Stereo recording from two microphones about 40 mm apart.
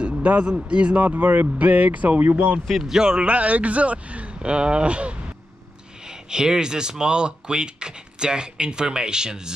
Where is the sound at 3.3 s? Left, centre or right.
Right.